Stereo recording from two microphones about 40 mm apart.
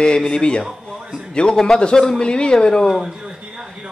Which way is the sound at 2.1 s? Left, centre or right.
Left.